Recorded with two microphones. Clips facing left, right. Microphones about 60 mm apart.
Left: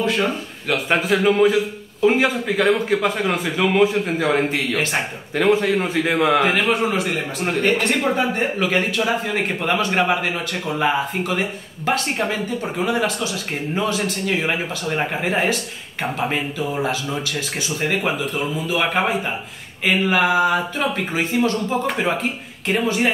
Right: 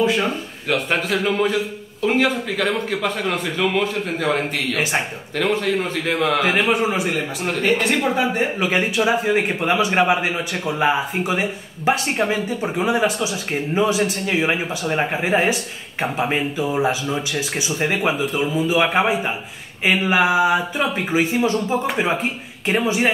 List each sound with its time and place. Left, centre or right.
0.0 s a man's voice: centre
6.4 s speech: centre